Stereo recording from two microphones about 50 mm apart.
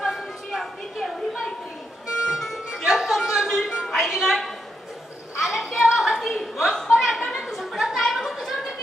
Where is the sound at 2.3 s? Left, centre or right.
Centre.